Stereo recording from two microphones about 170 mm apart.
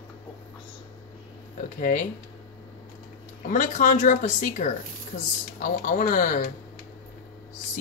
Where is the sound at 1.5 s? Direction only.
50° left (ahead or behind).